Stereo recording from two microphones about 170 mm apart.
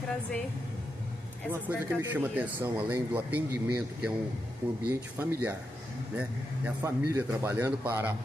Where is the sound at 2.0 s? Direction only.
10° right (ahead or behind).